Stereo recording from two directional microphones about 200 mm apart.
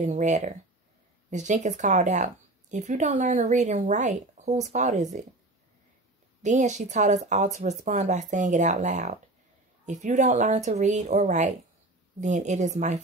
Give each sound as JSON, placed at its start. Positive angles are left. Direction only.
{"t": 0.0, "sound": "a woman's voice", "side_deg": -35}
{"t": 6.4, "sound": "a woman's voice", "side_deg": -35}